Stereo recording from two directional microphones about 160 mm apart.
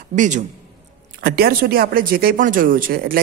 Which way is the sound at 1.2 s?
70° right (ahead or behind).